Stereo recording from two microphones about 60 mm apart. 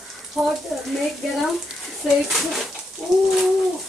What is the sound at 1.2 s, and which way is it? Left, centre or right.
Dishes, centre.